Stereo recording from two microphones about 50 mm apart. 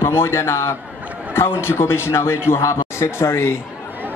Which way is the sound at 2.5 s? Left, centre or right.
Left.